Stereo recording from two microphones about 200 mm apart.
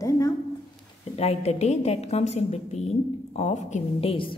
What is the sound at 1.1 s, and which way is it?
A woman's voice, 30° left (ahead or behind).